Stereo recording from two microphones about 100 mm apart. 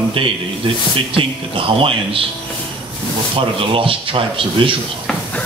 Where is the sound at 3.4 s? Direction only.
60° right (ahead or behind).